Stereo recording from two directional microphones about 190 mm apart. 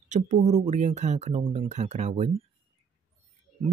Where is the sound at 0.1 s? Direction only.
40° right (ahead or behind).